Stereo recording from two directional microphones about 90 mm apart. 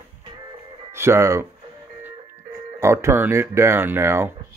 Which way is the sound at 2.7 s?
30° right (ahead or behind).